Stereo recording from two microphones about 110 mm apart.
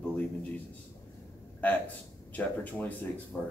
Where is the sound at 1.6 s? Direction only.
15° left (ahead or behind).